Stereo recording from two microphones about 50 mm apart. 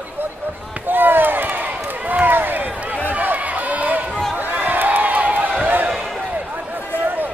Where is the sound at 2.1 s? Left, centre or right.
Right.